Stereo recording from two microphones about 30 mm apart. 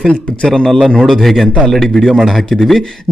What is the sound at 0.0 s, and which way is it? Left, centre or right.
Speech, left.